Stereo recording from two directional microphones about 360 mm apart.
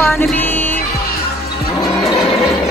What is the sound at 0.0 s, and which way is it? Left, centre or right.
Music, centre.